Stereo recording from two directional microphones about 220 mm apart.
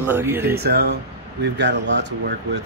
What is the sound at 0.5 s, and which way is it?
Speech, 45° right (ahead or behind).